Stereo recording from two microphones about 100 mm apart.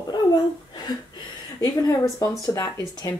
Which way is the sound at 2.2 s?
30° left (ahead or behind).